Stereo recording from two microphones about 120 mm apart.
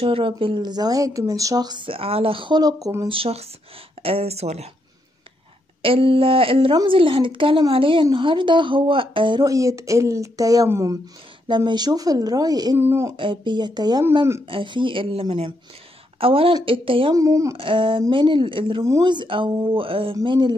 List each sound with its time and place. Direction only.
0.0 s a woman's voice: 50° right (ahead or behind)
3.1 s speech: 55° right (ahead or behind)
5.8 s speech: 50° right (ahead or behind)
9.5 s a woman's voice: 25° right (ahead or behind)
11.4 s a woman's voice: 40° right (ahead or behind)
12.7 s a woman's voice: 20° right (ahead or behind)
13.1 s a woman's voice: 45° right (ahead or behind)
17.1 s a woman's voice: 25° right (ahead or behind)
17.6 s a woman's voice: 45° right (ahead or behind)